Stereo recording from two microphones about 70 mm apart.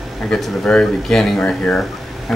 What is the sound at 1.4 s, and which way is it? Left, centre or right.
Speech, centre.